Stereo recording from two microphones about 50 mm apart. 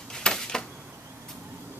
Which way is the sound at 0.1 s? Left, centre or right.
Centre.